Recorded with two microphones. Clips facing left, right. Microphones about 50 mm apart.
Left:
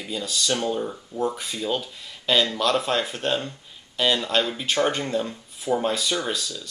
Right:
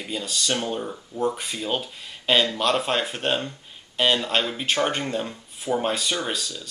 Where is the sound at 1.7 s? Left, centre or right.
Centre.